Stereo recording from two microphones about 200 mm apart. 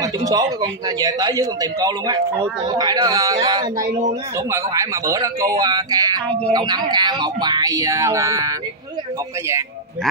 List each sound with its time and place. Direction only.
0.0 s speech: 15° right (ahead or behind)